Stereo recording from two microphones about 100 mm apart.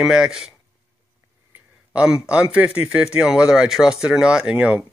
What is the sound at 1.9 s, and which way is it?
Speech, 10° right (ahead or behind).